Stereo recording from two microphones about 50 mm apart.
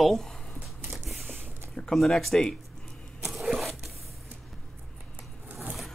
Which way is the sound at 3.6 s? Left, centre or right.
Centre.